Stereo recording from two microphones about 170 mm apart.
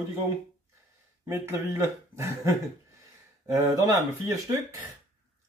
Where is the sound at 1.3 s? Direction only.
15° right (ahead or behind).